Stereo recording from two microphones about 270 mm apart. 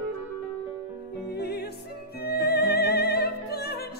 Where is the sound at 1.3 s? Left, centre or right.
Left.